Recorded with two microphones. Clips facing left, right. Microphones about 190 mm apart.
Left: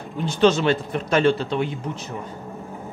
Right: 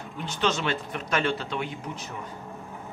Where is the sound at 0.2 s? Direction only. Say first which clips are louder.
Left 9 dB; 30° left (ahead or behind).